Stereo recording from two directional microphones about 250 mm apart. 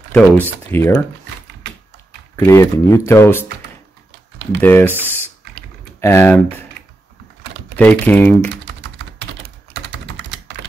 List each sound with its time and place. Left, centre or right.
0.1 s speech: centre
2.3 s speech: centre
4.6 s speech: centre
7.7 s speech: centre
10.1 s typing: right